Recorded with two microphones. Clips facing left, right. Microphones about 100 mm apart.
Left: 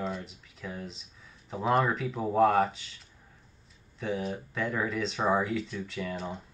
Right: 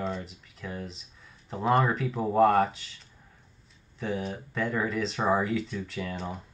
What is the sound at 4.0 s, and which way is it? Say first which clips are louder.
Speech: even; centre (ahead or behind).